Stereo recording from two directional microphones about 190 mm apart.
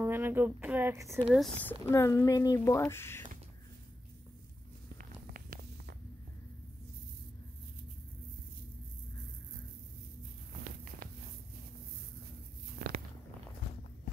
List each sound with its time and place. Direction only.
0.0 s speech: 10° right (ahead or behind)
1.3 s speech: 5° left (ahead or behind)
4.9 s a sound: 50° right (ahead or behind)